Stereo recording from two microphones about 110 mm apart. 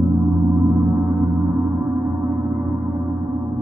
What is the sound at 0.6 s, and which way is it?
Gong, 20° right (ahead or behind).